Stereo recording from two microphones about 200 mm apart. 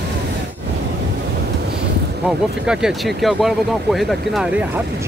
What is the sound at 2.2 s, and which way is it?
Speech, 5° right (ahead or behind).